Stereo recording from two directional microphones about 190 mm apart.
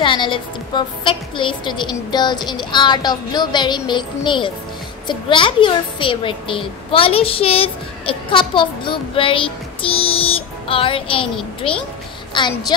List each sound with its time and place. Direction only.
0.0 s a woman's voice: 25° left (ahead or behind)